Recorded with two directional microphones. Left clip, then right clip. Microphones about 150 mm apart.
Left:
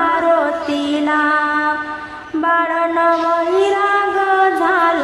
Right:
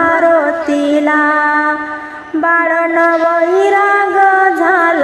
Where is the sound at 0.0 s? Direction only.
30° right (ahead or behind).